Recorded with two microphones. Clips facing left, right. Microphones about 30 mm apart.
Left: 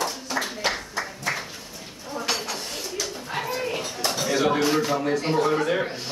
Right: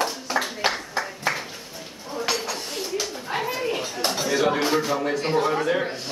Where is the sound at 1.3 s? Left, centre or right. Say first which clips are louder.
Right 2 dB; centre.